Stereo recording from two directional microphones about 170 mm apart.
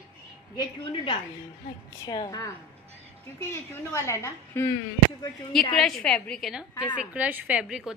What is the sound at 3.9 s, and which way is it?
Speech, 15° left (ahead or behind).